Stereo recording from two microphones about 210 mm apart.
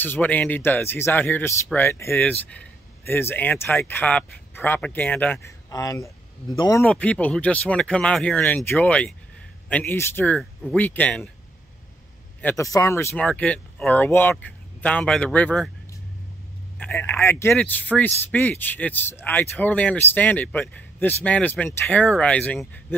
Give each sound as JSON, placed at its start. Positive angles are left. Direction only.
{"t": 0.0, "sound": "speech", "side_deg": 10}
{"t": 12.4, "sound": "speech", "side_deg": 10}
{"t": 16.7, "sound": "speech", "side_deg": 10}